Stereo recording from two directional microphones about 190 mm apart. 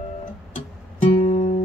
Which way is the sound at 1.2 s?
35° left (ahead or behind).